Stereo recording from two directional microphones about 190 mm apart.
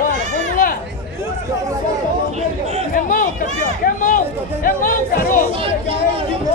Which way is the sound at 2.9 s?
45° left (ahead or behind).